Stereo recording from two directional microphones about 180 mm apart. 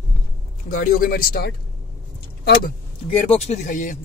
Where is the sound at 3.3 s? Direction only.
40° left (ahead or behind).